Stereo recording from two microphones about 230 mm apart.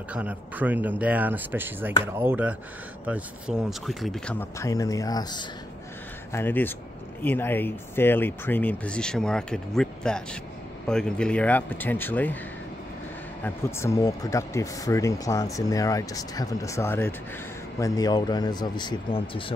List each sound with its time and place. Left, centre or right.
0.1 s speech: centre
13.4 s speech: centre